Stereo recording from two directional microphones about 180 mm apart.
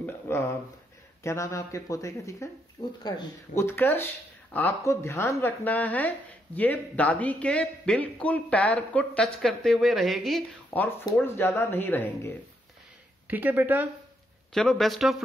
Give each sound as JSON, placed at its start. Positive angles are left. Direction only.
{"t": 0.0, "sound": "a sound", "side_deg": 15}
{"t": 1.2, "sound": "speech", "side_deg": 15}
{"t": 13.3, "sound": "speech", "side_deg": -10}
{"t": 14.5, "sound": "speech", "side_deg": 0}